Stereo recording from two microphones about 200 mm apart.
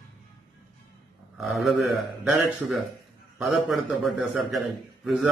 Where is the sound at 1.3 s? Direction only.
Centre (ahead or behind).